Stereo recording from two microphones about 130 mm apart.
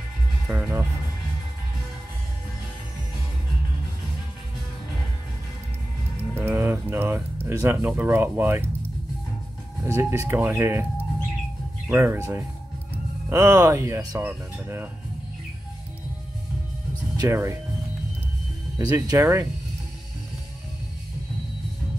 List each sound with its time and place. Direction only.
0.5 s speech: 20° right (ahead or behind)
6.3 s music: 20° right (ahead or behind)
7.4 s speech: 20° right (ahead or behind)
9.8 s speech: 20° right (ahead or behind)
11.9 s speech: 20° right (ahead or behind)
17.2 s speech: 25° right (ahead or behind)
18.8 s speech: 30° right (ahead or behind)